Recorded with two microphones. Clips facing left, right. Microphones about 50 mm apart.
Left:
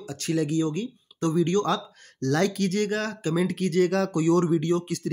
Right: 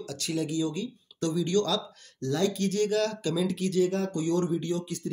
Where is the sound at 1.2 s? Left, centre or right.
Left.